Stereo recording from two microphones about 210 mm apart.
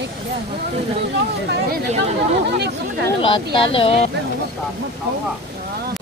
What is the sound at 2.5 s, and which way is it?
Speech, 50° right (ahead or behind).